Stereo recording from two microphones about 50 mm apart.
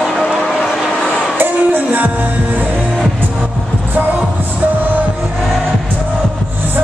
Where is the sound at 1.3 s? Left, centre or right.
Right.